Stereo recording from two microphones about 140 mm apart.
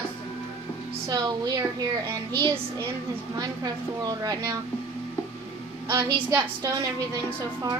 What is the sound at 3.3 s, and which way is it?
A woman's voice, 25° right (ahead or behind).